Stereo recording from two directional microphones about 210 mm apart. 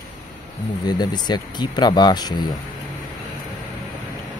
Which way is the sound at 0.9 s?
20° left (ahead or behind).